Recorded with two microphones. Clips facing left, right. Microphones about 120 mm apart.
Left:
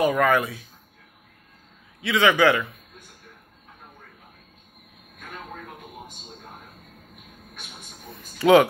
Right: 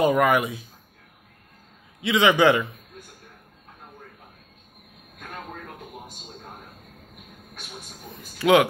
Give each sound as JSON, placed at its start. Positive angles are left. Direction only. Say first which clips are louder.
{"t": 0.0, "sound": "a man's voice", "louder": "right 1 dB", "side_deg": -20}
{"t": 2.0, "sound": "a man's voice", "louder": "right 1 dB", "side_deg": -20}
{"t": 8.4, "sound": "speech", "louder": "left 2 dB", "side_deg": 0}